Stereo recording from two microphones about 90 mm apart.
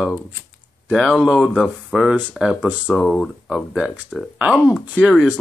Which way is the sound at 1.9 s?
5° right (ahead or behind).